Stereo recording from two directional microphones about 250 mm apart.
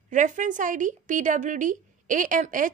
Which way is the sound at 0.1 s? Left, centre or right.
Right.